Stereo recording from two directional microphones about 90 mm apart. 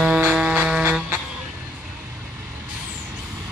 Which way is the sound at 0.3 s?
5° right (ahead or behind).